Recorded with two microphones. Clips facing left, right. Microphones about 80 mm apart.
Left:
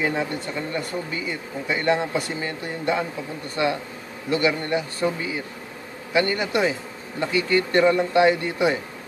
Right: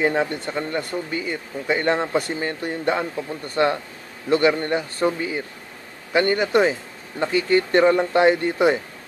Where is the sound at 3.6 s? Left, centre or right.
Right.